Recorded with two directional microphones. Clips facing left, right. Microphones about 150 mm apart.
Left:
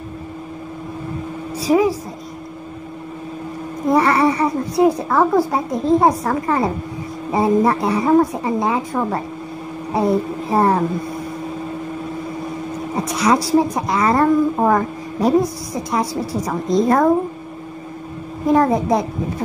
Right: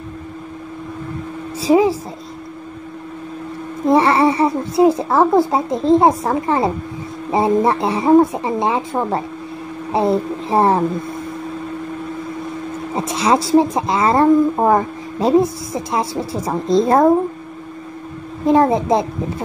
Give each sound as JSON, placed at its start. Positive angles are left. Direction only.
{"t": 1.6, "sound": "speech", "side_deg": -25}
{"t": 3.9, "sound": "speech", "side_deg": -25}
{"t": 12.9, "sound": "speech", "side_deg": -25}
{"t": 18.5, "sound": "speech", "side_deg": -25}